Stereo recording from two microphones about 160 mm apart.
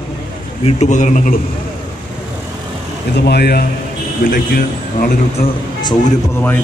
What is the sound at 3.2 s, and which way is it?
Speech, 90° left.